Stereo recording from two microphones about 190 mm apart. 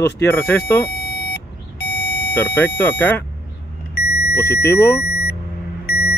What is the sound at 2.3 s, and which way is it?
Speech, 10° left (ahead or behind).